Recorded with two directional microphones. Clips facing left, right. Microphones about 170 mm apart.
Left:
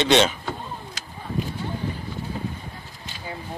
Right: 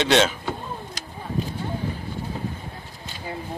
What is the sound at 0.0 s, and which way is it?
Speech, centre (ahead or behind).